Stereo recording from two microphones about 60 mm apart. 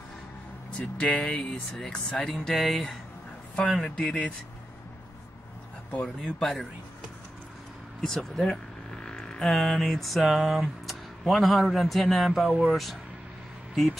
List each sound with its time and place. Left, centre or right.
0.7 s speech: centre
6.0 s speech: centre
8.0 s speech: centre
9.0 s music: centre
12.6 s speech: centre